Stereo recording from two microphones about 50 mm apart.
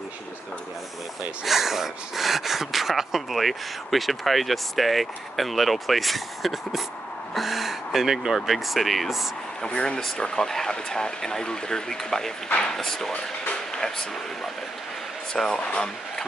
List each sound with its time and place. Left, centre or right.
1.4 s speech: centre
8.4 s speech: centre
9.7 s speech: centre